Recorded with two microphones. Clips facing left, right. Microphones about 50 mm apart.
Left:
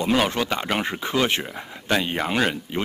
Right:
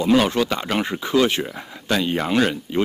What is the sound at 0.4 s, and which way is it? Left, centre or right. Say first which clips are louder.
Speech: right 3 dB; centre.